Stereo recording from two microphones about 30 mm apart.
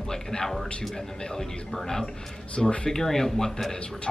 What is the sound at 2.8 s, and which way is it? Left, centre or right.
Speech, centre.